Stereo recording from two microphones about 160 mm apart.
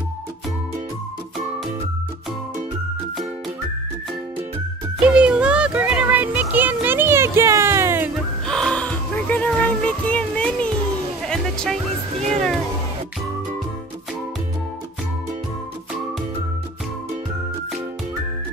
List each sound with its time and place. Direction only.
5.0 s music: 5° right (ahead or behind)
8.5 s music: 5° left (ahead or behind)
12.2 s cat: 50° right (ahead or behind)